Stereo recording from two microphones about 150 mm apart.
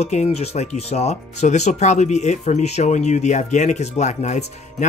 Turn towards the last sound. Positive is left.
turn(degrees=50)  # may be behind; listen again after turning